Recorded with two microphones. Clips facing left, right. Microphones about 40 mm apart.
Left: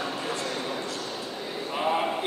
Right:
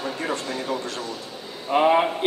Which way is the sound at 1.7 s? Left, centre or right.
Right.